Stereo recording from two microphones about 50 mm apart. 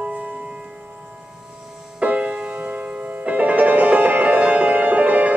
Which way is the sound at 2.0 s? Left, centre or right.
Right.